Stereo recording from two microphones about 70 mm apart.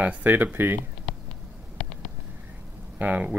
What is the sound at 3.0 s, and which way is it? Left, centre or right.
Speech, right.